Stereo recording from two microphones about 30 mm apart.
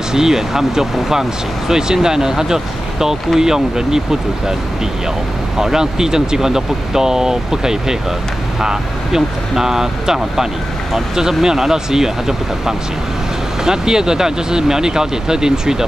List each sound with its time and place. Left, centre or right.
0.1 s speech: centre
1.7 s speech: right
5.6 s speech: centre